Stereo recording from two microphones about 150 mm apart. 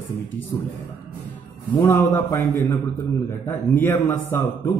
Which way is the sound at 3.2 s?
15° left (ahead or behind).